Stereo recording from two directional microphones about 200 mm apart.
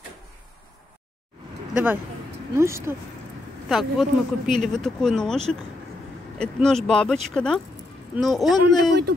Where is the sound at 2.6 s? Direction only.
15° right (ahead or behind).